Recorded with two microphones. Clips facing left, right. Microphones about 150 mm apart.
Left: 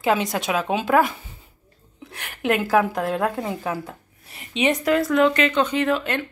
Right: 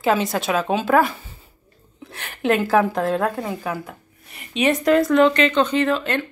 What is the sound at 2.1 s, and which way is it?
A woman's voice, 10° left (ahead or behind).